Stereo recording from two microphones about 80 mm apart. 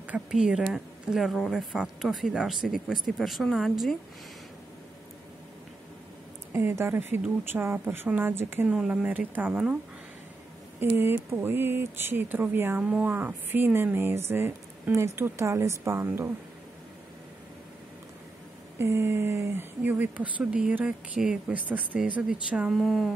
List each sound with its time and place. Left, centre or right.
0.3 s speech: centre
6.5 s speech: right
8.6 s speech: centre
10.8 s a woman's voice: right
18.8 s a woman's voice: right
22.7 s speech: centre